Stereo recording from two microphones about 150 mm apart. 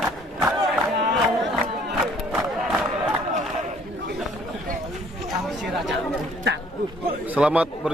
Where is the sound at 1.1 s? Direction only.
Centre (ahead or behind).